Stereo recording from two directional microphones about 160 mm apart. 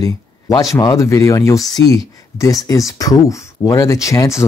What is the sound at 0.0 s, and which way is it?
Speech, 20° left (ahead or behind).